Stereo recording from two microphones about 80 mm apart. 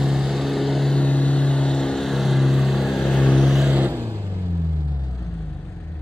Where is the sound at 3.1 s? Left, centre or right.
Centre.